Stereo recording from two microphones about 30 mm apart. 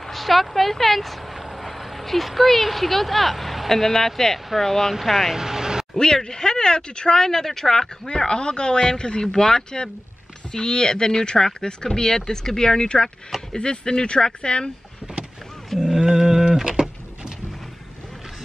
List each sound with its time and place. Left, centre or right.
0.0 s speech: centre
5.0 s speech: centre
5.3 s vehicle: centre
5.9 s speech: left
8.3 s speech: left
16.0 s a sound: right